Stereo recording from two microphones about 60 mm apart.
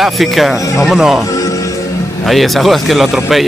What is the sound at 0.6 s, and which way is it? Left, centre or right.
Speech, left.